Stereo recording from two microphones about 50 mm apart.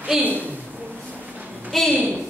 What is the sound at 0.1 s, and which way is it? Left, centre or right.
Speech, centre.